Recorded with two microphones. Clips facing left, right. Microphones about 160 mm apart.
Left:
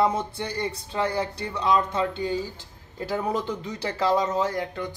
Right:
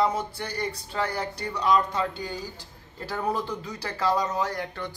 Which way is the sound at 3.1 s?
20° left (ahead or behind).